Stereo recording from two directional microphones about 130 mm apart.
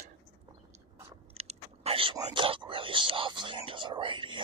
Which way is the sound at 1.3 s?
50° right (ahead or behind).